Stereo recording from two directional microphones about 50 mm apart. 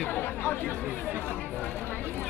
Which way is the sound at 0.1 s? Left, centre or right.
Left.